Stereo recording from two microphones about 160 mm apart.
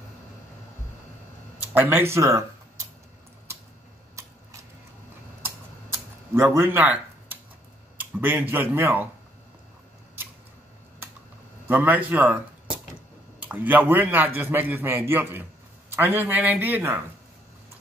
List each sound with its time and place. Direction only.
1.7 s a man's voice: 10° right (ahead or behind)
4.1 s a sound: 20° right (ahead or behind)
5.4 s typing: 15° right (ahead or behind)
8.0 s a man's voice: 10° right (ahead or behind)
11.6 s a man's voice: 10° right (ahead or behind)
13.4 s a man's voice: 10° right (ahead or behind)